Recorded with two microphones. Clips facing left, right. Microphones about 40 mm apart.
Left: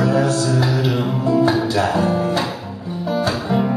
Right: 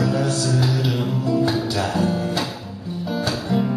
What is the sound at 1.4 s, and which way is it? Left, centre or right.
Music, centre.